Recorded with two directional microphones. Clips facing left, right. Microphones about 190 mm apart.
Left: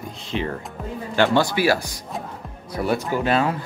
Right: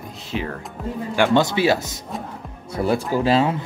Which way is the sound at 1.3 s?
20° right (ahead or behind).